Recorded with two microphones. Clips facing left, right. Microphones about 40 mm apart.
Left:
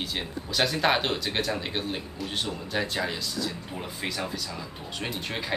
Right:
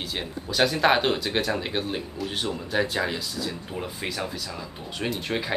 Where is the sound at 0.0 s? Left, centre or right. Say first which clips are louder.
Right 1 dB; centre.